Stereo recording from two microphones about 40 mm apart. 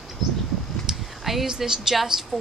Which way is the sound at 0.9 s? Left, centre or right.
Centre.